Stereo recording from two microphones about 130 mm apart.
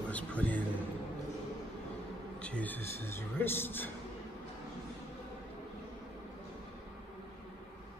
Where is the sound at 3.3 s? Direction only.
15° left (ahead or behind).